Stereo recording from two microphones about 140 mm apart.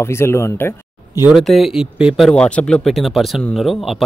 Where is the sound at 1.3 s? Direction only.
Centre (ahead or behind).